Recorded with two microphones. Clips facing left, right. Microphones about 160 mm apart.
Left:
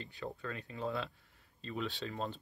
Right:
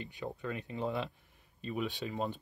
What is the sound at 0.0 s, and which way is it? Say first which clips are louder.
Speech: right 3 dB; 20° right (ahead or behind).